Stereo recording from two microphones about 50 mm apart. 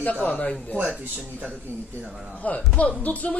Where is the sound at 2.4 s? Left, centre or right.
Left.